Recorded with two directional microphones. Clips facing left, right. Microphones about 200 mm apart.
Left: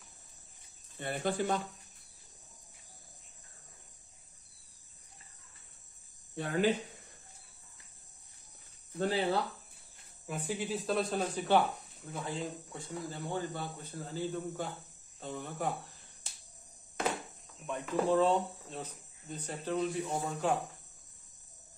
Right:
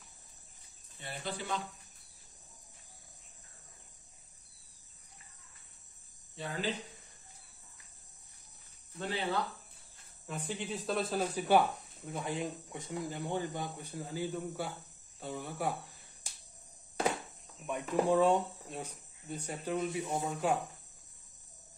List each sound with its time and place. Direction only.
0.9 s speech: 55° left (ahead or behind)
6.3 s speech: 55° left (ahead or behind)
8.9 s speech: 40° left (ahead or behind)
10.2 s speech: 10° left (ahead or behind); by 15.7 s 10° right (ahead or behind)
17.6 s speech: 15° right (ahead or behind)